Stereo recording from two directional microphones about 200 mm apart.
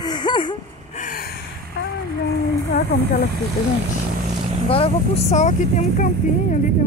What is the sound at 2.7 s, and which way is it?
Speech, 50° left (ahead or behind).